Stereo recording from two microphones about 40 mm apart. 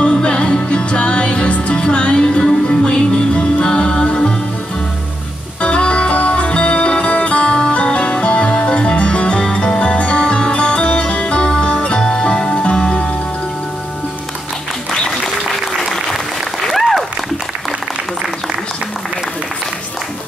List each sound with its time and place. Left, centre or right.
0.0 s music: centre
5.6 s music: left
14.9 s applause: centre